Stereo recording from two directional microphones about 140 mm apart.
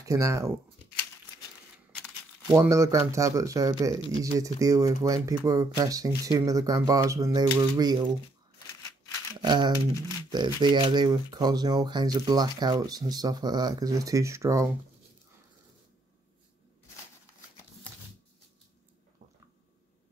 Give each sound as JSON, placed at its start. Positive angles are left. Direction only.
{"t": 0.0, "sound": "speech", "side_deg": -20}
{"t": 2.4, "sound": "speech", "side_deg": -15}
{"t": 9.4, "sound": "speech", "side_deg": -30}